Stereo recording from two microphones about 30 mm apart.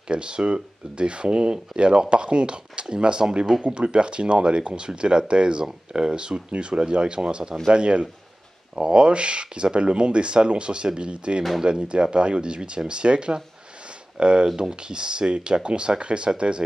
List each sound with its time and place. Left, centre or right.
0.1 s speech: right